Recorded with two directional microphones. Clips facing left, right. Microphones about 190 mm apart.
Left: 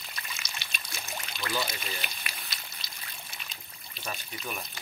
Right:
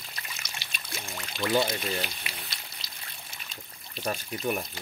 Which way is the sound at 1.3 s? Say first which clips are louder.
Right 8 dB; 55° right (ahead or behind).